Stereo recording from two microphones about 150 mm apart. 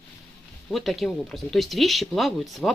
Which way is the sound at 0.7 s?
Centre (ahead or behind).